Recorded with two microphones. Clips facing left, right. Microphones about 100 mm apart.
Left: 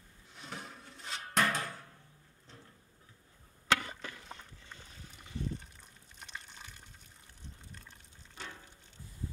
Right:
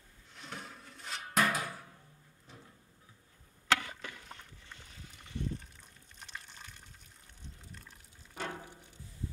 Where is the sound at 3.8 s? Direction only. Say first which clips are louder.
Left 1 dB; 20° left (ahead or behind).